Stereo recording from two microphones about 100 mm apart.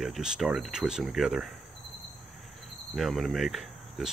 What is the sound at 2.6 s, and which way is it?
Cricket, centre (ahead or behind).